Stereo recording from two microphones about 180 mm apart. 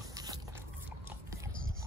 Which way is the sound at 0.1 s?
20° right (ahead or behind).